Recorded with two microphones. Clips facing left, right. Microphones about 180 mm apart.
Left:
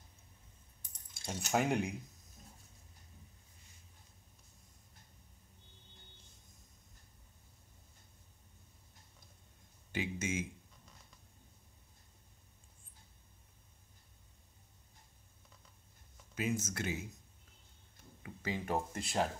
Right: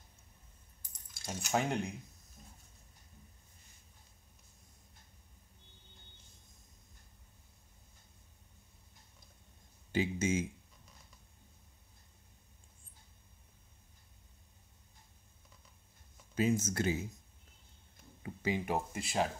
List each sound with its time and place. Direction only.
1.2 s speech: centre (ahead or behind)
9.9 s speech: 30° right (ahead or behind)
16.3 s speech: 30° right (ahead or behind)
18.2 s speech: 20° right (ahead or behind)
18.8 s speech: 5° right (ahead or behind)